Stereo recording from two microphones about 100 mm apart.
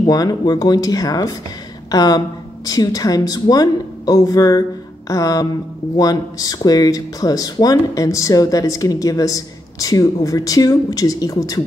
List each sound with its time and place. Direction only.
0.0 s speech: 40° left (ahead or behind)